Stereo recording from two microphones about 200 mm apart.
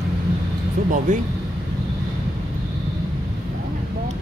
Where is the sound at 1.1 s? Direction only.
40° right (ahead or behind).